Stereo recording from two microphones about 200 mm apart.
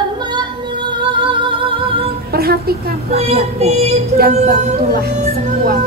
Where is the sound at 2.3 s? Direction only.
50° right (ahead or behind).